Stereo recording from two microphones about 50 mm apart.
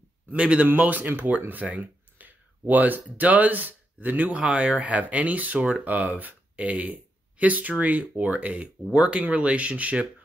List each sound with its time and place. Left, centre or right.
0.4 s speech: right
0.7 s speech: right
8.9 s speech: centre